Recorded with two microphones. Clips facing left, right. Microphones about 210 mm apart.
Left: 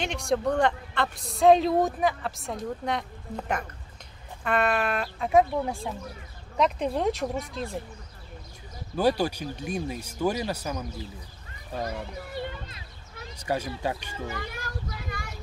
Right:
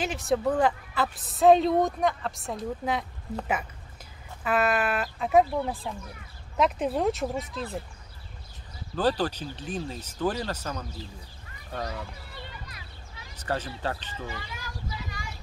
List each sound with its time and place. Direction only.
0.0 s a man's voice: 5° right (ahead or behind)
8.9 s speech: 10° left (ahead or behind)
13.4 s speech: 10° left (ahead or behind)
14.2 s a sound: 55° left (ahead or behind)